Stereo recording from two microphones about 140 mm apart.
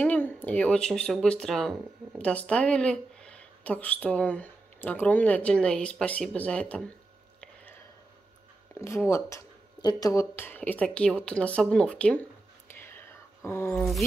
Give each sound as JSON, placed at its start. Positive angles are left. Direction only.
{"t": 0.0, "sound": "speech", "side_deg": 10}
{"t": 7.3, "sound": "a sound", "side_deg": 10}
{"t": 8.8, "sound": "speech", "side_deg": 20}
{"t": 10.3, "sound": "speech", "side_deg": 15}
{"t": 12.8, "sound": "whispering", "side_deg": 15}